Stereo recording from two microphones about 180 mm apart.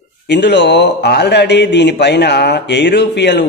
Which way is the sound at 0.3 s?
75° left (ahead or behind).